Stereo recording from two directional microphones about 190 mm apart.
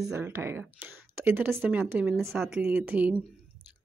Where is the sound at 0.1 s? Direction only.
10° right (ahead or behind).